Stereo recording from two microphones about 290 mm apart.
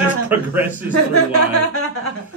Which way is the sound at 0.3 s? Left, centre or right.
Centre.